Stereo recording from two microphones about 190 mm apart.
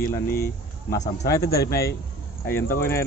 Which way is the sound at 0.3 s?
50° left (ahead or behind).